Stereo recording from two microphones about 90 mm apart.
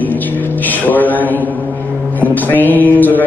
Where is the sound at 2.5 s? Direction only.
20° left (ahead or behind).